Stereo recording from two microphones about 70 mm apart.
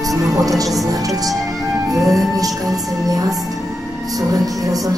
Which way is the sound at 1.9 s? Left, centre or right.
Centre.